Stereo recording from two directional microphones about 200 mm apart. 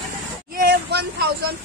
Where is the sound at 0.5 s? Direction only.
55° right (ahead or behind).